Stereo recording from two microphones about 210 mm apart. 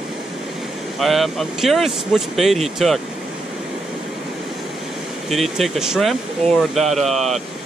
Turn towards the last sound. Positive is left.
turn(degrees=0)  # may be behind; listen again after turning